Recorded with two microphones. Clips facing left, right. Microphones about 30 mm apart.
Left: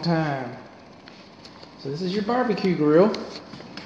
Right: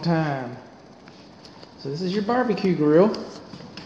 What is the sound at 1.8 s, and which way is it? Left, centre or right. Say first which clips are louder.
Speech: right 1 dB; centre.